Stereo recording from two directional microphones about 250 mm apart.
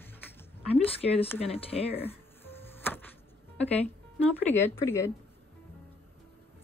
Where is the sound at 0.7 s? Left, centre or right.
Left.